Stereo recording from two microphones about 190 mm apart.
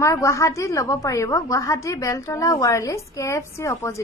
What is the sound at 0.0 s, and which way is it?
A woman's voice, 15° left (ahead or behind).